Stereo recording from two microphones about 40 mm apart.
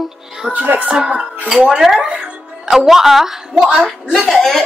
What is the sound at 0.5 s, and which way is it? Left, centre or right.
Speech, right.